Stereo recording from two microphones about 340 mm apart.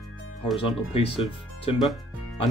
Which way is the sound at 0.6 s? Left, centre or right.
Centre.